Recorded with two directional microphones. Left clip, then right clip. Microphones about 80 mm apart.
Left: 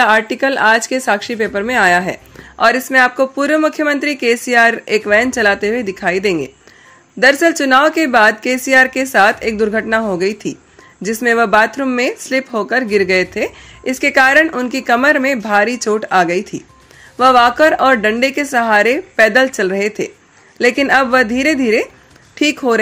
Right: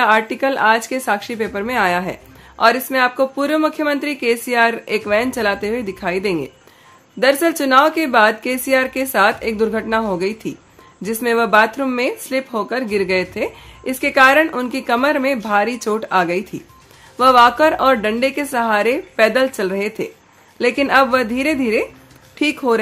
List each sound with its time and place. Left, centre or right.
0.0 s speech: left